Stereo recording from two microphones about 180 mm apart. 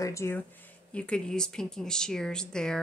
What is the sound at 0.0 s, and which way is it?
Speech, 15° left (ahead or behind).